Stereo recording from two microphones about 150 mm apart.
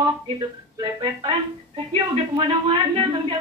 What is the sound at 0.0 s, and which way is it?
Speech, 30° right (ahead or behind).